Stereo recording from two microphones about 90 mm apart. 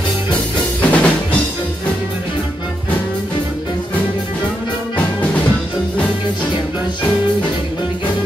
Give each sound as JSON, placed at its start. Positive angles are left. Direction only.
{"t": 0.7, "sound": "drum", "side_deg": 15}
{"t": 4.9, "sound": "music", "side_deg": 15}